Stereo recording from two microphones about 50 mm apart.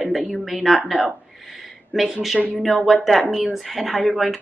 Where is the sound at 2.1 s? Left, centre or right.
Centre.